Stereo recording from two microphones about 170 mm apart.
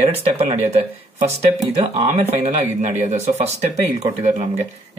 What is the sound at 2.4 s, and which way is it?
Speech, 45° right (ahead or behind).